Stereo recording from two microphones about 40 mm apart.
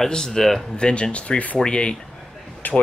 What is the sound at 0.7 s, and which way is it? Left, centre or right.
Speech, left.